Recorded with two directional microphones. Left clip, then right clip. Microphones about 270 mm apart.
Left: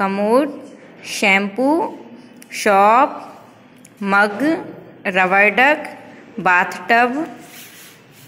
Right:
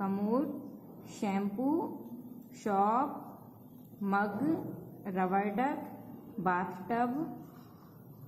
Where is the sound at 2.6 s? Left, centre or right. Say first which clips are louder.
Left 18 dB; left.